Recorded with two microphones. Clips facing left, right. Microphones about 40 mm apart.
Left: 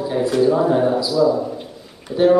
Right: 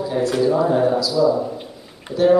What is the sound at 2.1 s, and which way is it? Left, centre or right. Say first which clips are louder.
Speech: left 2 dB; right.